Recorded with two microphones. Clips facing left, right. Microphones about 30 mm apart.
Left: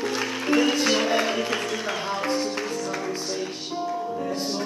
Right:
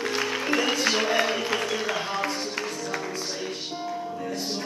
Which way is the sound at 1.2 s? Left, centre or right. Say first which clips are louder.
Even; centre.